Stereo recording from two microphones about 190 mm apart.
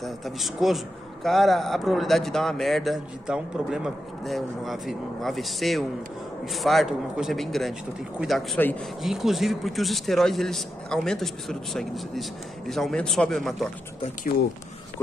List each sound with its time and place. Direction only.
0.0 s a man's voice: centre (ahead or behind)